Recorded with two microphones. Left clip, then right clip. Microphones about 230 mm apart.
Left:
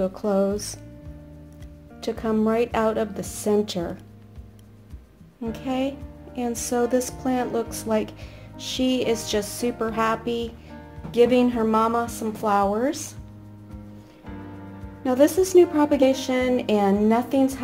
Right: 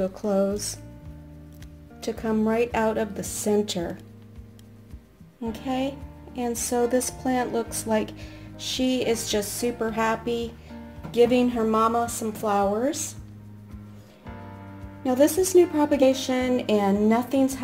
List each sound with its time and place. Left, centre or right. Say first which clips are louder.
0.0 s speech: left 2 dB; centre
2.0 s speech: left 2 dB; centre
5.4 s speech: left 1 dB; centre
15.0 s speech: left 2 dB; centre